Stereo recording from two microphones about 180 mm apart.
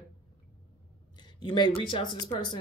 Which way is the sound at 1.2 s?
25° left (ahead or behind).